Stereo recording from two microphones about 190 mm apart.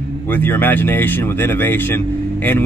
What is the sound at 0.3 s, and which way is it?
Speech, 10° left (ahead or behind).